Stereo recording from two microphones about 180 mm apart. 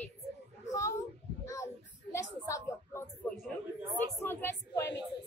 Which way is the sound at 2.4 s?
15° left (ahead or behind).